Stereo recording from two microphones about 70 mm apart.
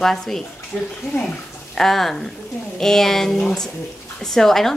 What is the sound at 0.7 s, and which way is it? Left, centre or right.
Speech, centre.